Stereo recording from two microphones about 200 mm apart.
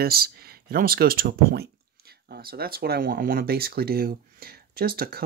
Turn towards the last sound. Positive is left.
turn(degrees=-50)  # may be behind; listen again after turning